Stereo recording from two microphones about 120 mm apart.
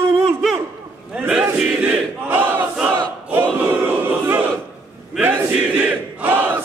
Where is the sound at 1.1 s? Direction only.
10° right (ahead or behind).